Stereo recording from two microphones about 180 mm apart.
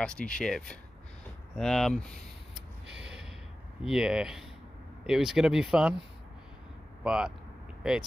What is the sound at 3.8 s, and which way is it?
Speech, 5° right (ahead or behind).